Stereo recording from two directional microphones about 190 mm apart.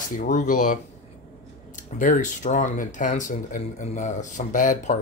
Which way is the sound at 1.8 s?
40° left (ahead or behind).